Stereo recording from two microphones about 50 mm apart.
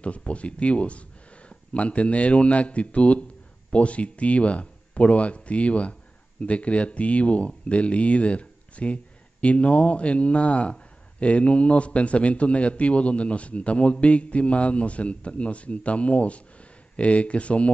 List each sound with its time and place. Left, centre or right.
0.0 s speech: left